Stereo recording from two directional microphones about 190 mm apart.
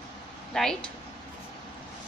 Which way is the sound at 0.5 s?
5° left (ahead or behind).